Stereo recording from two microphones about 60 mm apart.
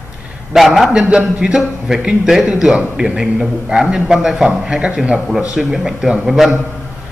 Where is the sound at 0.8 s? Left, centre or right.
Centre.